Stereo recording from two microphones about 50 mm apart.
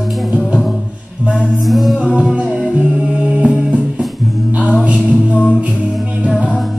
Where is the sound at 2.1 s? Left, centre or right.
Right.